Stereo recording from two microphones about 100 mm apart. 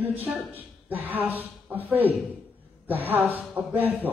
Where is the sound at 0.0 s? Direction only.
20° right (ahead or behind).